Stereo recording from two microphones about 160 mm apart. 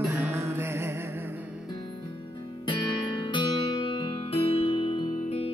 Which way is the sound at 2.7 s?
30° left (ahead or behind).